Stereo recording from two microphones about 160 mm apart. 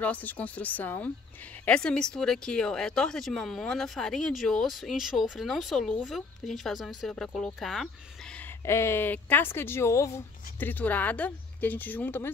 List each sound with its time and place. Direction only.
0.0 s speech: 10° left (ahead or behind)